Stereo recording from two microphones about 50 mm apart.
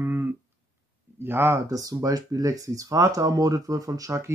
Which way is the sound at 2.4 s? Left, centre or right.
Right.